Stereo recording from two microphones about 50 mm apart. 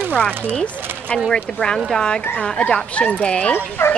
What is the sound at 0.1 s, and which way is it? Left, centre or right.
A woman's voice, left.